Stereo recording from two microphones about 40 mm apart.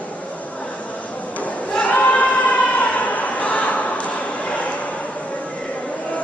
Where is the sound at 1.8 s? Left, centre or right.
Left.